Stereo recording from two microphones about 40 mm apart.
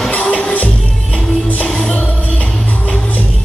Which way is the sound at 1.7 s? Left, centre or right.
Centre.